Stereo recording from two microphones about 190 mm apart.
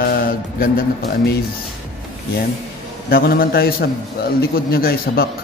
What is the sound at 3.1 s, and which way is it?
A man's voice, 50° left (ahead or behind).